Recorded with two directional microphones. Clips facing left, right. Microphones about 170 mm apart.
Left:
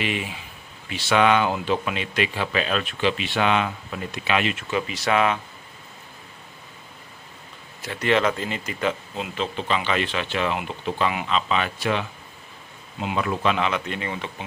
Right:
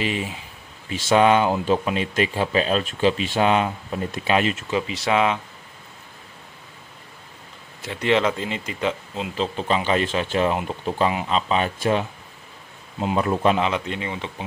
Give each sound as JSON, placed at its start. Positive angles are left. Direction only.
{"t": 0.0, "sound": "speech", "side_deg": -35}
{"t": 4.6, "sound": "speech", "side_deg": -25}
{"t": 7.8, "sound": "speech", "side_deg": -25}
{"t": 9.6, "sound": "speech", "side_deg": -40}